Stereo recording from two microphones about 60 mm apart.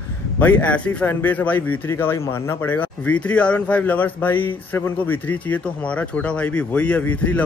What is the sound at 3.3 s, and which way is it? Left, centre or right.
Speech, centre.